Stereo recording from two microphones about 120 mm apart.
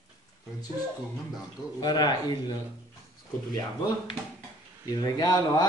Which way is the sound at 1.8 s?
35° left (ahead or behind).